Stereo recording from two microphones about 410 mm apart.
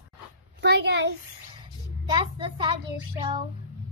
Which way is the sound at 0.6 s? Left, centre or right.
Right.